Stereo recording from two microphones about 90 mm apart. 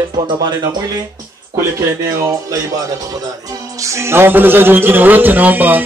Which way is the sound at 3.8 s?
30° right (ahead or behind).